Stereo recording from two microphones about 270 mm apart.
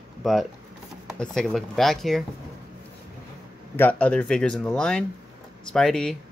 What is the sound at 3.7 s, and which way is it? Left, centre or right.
Speech, centre.